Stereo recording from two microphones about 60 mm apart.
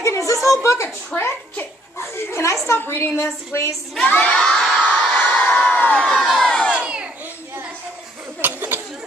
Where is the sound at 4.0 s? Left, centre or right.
Left.